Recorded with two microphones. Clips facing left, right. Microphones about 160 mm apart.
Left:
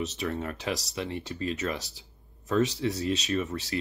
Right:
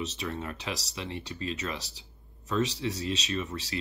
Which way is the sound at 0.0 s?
50° left (ahead or behind).